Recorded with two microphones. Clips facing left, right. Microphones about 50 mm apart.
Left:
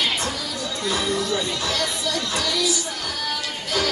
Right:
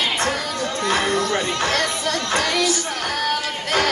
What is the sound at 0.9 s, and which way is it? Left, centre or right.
Music, right.